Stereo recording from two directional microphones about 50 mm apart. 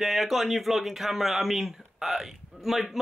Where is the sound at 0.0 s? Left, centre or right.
Centre.